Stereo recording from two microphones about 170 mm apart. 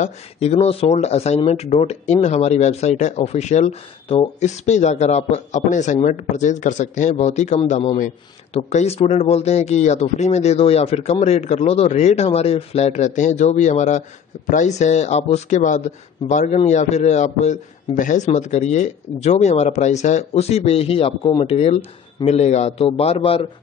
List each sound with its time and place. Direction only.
0.0 s speech: 40° left (ahead or behind)